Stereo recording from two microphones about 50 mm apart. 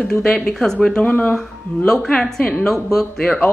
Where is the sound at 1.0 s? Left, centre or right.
Left.